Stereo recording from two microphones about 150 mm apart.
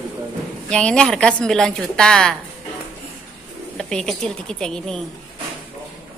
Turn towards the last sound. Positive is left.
turn(degrees=5)  # may be behind; listen again after turning